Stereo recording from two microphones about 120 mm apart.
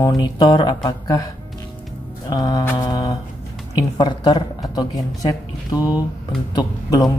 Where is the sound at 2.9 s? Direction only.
35° left (ahead or behind).